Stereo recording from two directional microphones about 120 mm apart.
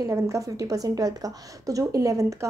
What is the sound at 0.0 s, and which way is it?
A woman's voice, 25° right (ahead or behind).